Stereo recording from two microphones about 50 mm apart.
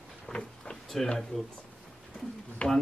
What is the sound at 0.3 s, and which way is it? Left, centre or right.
Vehicle, left.